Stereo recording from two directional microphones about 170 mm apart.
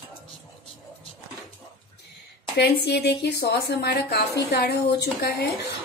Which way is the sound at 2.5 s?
70° left (ahead or behind).